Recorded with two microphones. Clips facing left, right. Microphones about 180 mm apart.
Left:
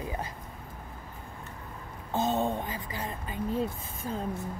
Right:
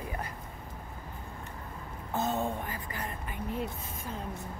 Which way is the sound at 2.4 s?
20° left (ahead or behind).